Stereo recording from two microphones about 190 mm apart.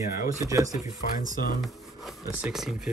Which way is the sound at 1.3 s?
50° left (ahead or behind).